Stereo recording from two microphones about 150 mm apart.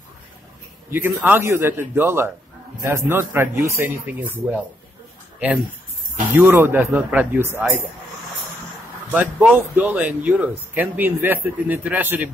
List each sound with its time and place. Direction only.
0.8 s speech: 15° right (ahead or behind)
9.1 s speech: 10° right (ahead or behind)